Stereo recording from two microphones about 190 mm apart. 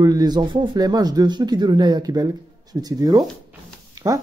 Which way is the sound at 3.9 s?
20° right (ahead or behind).